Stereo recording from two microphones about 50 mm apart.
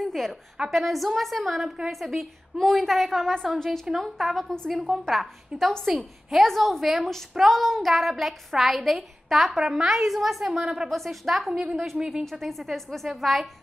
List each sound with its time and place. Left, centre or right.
0.0 s a sound: centre
0.7 s a woman's voice: centre
5.5 s speech: right
5.9 s a woman's voice: centre
6.4 s a woman's voice: centre
10.9 s a woman's voice: centre